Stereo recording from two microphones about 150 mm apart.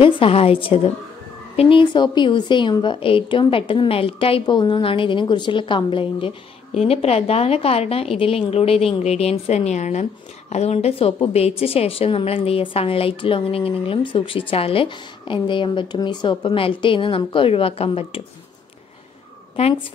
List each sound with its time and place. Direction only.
0.0 s a woman's voice: 40° left (ahead or behind)
19.6 s a woman's voice: 40° left (ahead or behind)